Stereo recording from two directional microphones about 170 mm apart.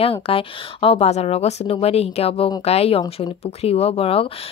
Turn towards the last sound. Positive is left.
turn(degrees=35)  # may be behind; listen again after turning